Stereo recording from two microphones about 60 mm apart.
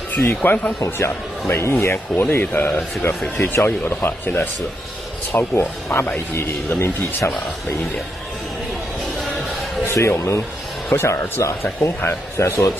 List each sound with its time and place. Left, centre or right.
0.4 s speech: left
0.7 s speech: left
9.9 s speech: left